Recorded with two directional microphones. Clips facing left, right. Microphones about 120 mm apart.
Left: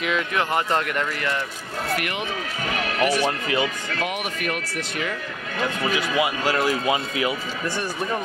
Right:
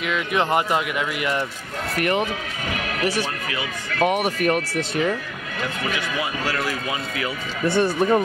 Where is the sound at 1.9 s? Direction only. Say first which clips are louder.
Right 11 dB; 40° right (ahead or behind).